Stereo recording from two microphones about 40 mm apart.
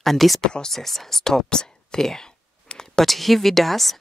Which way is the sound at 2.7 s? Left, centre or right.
Left.